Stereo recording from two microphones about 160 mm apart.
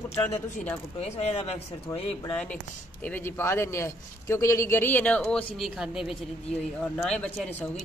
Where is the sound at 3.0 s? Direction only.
10° left (ahead or behind).